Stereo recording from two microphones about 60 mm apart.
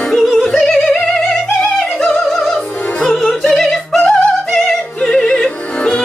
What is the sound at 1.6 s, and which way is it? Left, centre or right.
Opera, centre.